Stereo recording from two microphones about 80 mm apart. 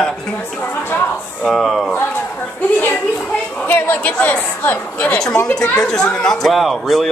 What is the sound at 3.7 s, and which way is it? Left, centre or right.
Speech, left.